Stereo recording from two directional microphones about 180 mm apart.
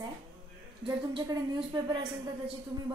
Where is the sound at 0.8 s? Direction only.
25° right (ahead or behind).